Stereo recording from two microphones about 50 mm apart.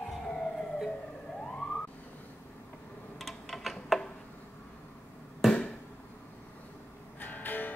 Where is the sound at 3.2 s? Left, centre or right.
Centre.